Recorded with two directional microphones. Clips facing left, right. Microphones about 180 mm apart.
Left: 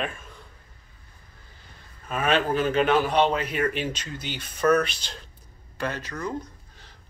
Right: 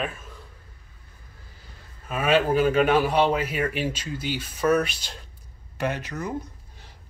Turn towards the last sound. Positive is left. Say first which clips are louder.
# right 3 dB
turn(degrees=-15)  # may be behind; listen again after turning